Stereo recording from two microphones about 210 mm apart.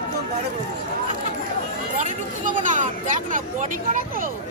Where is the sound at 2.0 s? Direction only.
35° right (ahead or behind).